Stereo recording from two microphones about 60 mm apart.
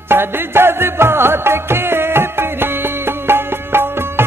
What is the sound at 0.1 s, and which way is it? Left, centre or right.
Music, right.